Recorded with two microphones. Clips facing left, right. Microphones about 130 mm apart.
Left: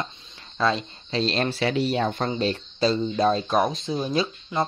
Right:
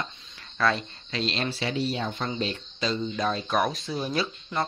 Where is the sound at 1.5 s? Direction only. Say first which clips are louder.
Left 5 dB; 65° left (ahead or behind).